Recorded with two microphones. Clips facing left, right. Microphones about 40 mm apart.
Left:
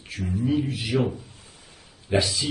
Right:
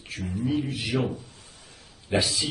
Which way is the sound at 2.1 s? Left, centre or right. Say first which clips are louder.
Left 2 dB; centre.